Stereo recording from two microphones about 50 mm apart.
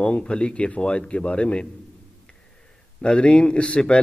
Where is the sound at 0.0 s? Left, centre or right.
Left.